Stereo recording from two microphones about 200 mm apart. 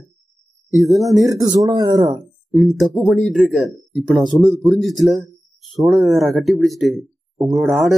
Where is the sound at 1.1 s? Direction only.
15° right (ahead or behind).